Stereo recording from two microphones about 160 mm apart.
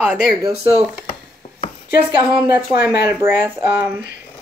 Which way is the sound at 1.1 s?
50° left (ahead or behind).